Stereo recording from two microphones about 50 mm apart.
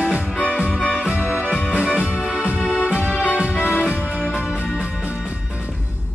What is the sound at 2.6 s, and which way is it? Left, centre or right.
Music, left.